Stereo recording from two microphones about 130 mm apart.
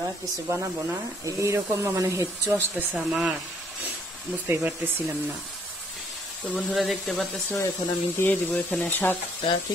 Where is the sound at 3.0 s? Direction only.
5° right (ahead or behind).